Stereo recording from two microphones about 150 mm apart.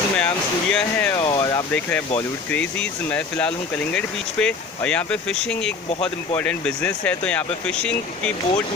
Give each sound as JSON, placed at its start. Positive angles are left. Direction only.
{"t": 0.2, "sound": "speech", "side_deg": 5}
{"t": 1.2, "sound": "a sound", "side_deg": 30}
{"t": 1.7, "sound": "speech", "side_deg": 10}